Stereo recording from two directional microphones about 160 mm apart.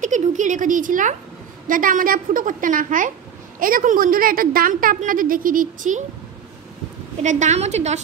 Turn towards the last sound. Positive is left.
turn(degrees=-45)  # may be behind; listen again after turning